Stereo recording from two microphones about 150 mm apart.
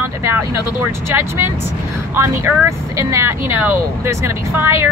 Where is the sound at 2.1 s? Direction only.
15° right (ahead or behind).